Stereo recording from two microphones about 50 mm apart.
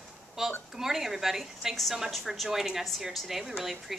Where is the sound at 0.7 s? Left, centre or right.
Centre.